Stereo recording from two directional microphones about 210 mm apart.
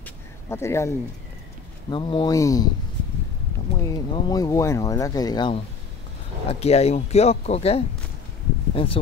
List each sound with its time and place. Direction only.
0.0 s a sound: 10° left (ahead or behind)
1.9 s speech: 25° left (ahead or behind)
3.8 s speech: 20° left (ahead or behind)